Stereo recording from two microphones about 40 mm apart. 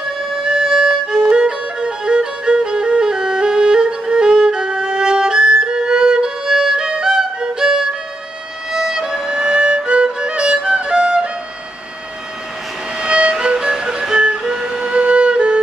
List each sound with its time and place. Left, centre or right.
0.4 s music: centre
8.7 s violin: centre
13.0 s music: right